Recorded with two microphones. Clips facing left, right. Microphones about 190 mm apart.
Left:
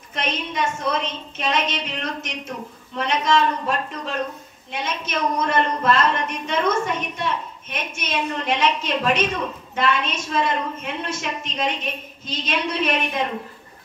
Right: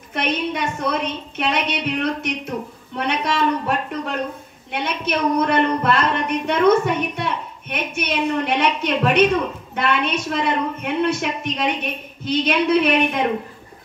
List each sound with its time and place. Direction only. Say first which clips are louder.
0.1 s a woman's voice: right 5 dB; 60° right (ahead or behind)